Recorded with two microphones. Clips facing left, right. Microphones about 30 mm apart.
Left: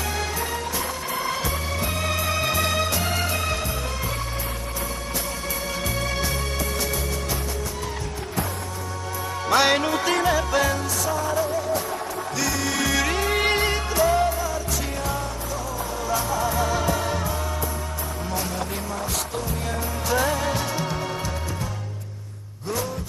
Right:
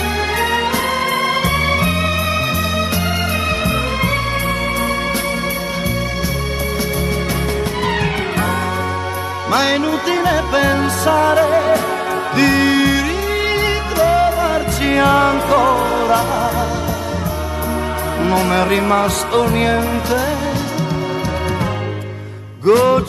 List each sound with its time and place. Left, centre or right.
9.5 s music: centre; by 10.8 s right
11.1 s music: right
12.4 s music: right
12.9 s music: centre; by 14.3 s right
14.4 s music: right
16.0 s music: right
16.3 s music: right
18.2 s music: right
22.7 s music: right